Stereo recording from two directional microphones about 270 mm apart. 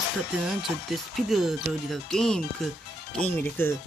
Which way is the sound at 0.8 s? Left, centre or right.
Centre.